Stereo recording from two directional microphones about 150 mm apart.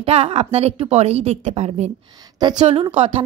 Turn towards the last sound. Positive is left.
turn(degrees=-40)  # may be behind; listen again after turning